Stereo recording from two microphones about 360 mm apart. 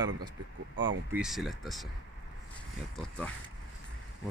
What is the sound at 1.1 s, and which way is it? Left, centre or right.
Speech, centre.